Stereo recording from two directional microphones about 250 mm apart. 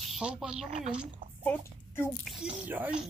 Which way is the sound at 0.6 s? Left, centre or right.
Right.